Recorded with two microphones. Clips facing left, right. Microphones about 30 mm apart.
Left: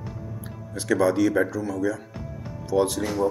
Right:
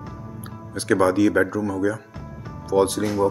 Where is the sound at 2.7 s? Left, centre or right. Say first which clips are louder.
Right 3 dB; centre.